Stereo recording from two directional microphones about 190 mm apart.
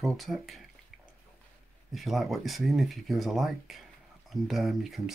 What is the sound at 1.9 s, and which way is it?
Speech, centre (ahead or behind).